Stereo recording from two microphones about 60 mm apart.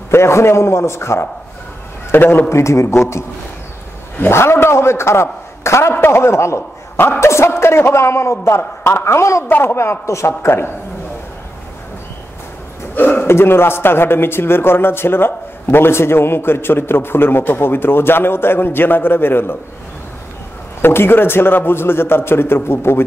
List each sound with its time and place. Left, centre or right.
0.1 s a man's voice: left
2.0 s a man's voice: left
2.5 s a man's voice: left
9.5 s a man's voice: left
9.8 s a man's voice: left
12.9 s a man's voice: left
20.8 s a man's voice: left